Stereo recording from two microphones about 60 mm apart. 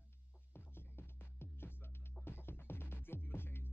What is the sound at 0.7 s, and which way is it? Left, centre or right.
Music, left.